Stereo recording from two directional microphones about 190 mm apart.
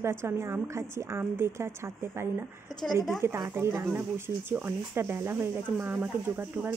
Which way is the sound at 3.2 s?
15° right (ahead or behind).